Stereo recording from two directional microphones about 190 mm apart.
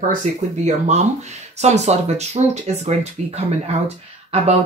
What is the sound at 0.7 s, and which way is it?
Speech, 40° right (ahead or behind).